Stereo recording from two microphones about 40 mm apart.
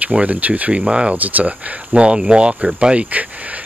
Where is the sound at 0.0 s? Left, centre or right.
Right.